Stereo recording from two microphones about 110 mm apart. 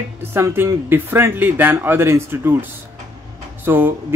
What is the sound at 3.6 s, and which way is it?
Speech, 20° right (ahead or behind).